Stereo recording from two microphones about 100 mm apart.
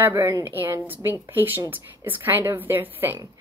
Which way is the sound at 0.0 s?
25° right (ahead or behind).